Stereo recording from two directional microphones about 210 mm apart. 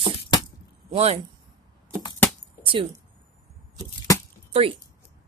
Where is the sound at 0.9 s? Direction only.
30° right (ahead or behind).